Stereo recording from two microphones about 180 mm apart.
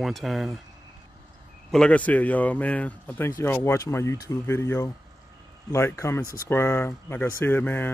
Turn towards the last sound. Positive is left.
turn(degrees=10)  # may be behind; listen again after turning